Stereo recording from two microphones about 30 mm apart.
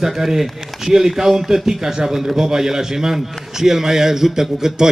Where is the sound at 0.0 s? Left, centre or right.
Centre.